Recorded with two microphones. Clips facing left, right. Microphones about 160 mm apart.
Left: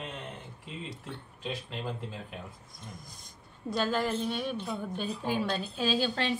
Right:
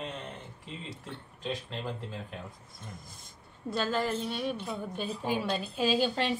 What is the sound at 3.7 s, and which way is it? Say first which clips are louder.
A woman's voice: left 1 dB; centre (ahead or behind).